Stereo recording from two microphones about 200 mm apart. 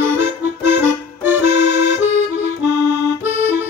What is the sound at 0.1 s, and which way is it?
Accordion, 10° right (ahead or behind).